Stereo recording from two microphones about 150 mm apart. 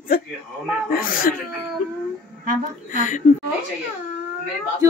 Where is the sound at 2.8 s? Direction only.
60° left (ahead or behind).